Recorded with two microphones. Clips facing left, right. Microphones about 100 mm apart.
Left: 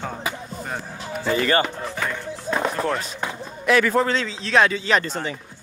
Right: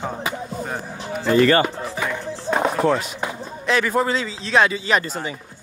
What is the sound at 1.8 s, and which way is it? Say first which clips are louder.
Speech: right 2 dB; 5° right (ahead or behind).